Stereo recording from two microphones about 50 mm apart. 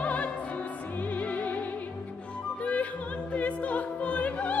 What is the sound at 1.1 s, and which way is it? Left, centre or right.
Music, left.